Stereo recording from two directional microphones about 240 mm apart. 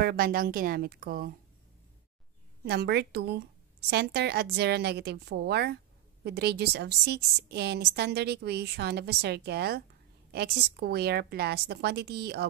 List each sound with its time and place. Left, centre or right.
0.0 s a woman's voice: right
2.6 s a woman's voice: right